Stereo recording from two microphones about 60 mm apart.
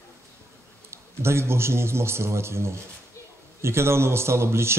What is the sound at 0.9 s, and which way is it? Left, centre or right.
Speech, right.